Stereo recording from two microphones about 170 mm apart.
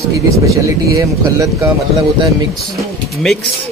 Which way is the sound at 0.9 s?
20° right (ahead or behind).